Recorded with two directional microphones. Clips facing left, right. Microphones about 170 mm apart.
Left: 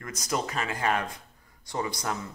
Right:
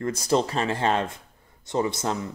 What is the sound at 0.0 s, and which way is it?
A man's voice, 30° right (ahead or behind).